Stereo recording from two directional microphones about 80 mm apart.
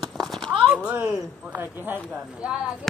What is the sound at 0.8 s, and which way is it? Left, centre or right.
A man's voice, centre.